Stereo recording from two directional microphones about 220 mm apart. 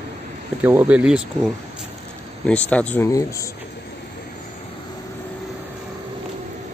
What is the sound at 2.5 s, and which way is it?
Speech, 5° left (ahead or behind).